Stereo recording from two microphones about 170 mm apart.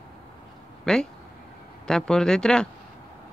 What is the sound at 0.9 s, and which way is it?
Speech, 5° left (ahead or behind).